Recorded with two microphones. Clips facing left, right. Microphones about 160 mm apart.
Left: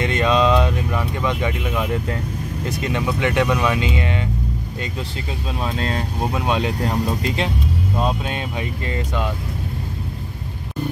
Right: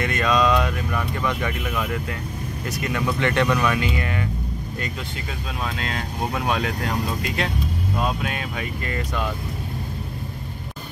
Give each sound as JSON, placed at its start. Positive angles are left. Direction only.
{"t": 0.0, "sound": "speech", "side_deg": 25}
{"t": 5.6, "sound": "speech", "side_deg": 30}